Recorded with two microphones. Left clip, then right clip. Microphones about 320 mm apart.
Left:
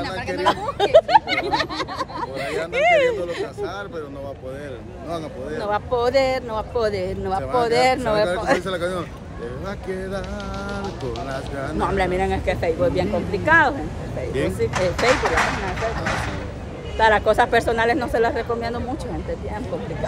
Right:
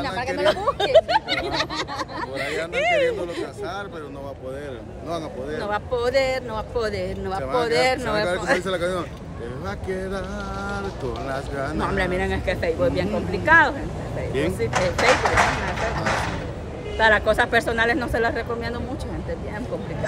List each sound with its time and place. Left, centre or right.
0.7 s speech: left
5.1 s speech: centre
11.2 s speech: centre
14.7 s speech: right
17.0 s speech: centre